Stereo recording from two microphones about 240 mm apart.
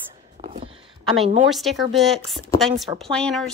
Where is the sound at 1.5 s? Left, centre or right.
Centre.